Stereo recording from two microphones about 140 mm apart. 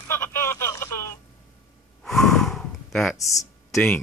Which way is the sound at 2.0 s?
5° left (ahead or behind).